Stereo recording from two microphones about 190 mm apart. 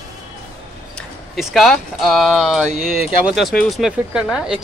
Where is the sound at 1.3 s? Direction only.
Centre (ahead or behind).